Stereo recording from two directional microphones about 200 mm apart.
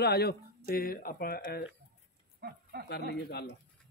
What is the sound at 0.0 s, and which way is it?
Speech, 55° left (ahead or behind).